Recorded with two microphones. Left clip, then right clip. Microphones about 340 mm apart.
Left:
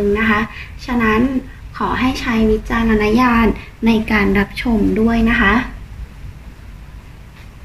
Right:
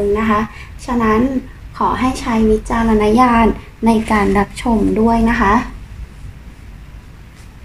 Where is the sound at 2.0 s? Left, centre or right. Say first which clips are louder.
Right 1 dB; right.